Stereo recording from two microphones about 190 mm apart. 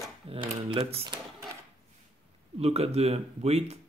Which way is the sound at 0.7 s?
30° right (ahead or behind).